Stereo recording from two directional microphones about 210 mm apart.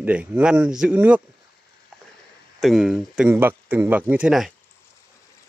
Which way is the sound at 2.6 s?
Centre (ahead or behind).